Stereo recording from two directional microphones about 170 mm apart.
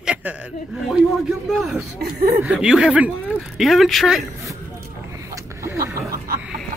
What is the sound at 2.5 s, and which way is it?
Speech, 5° right (ahead or behind).